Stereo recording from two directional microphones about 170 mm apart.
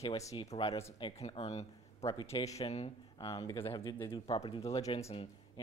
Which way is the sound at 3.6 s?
30° left (ahead or behind).